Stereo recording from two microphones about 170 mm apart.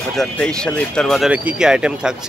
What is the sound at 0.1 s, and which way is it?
Speech, 5° left (ahead or behind).